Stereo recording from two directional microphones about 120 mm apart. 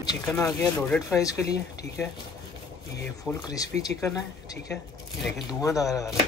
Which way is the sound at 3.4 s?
30° left (ahead or behind).